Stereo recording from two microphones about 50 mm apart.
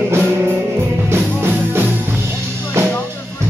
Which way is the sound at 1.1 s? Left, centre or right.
Right.